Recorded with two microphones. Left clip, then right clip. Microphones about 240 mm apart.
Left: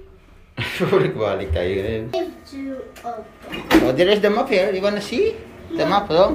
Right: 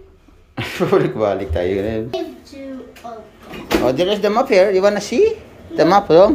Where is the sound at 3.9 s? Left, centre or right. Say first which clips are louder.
Even; centre.